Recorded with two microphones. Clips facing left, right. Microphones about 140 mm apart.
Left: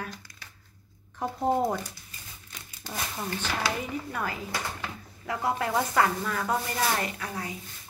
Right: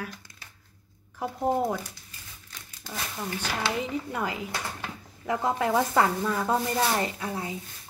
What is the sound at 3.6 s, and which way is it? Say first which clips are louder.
Speech: right 2 dB; 20° right (ahead or behind).